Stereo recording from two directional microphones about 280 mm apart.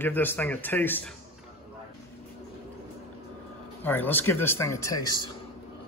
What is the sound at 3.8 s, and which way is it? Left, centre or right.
A man's voice, centre.